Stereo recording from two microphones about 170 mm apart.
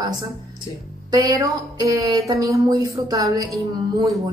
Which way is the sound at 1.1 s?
20° right (ahead or behind).